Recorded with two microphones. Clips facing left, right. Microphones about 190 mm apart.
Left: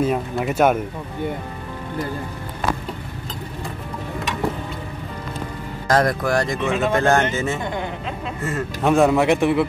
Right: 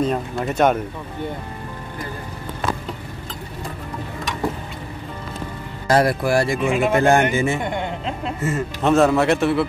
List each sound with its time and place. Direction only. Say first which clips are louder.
0.0 s a man's voice: left 1 dB; 5° left (ahead or behind)
5.9 s speech: right 1 dB; 10° right (ahead or behind)
7.6 s a man's voice: right 1 dB; 25° right (ahead or behind)
8.4 s speech: right 2 dB; centre (ahead or behind)
8.8 s a man's voice: even; 15° left (ahead or behind)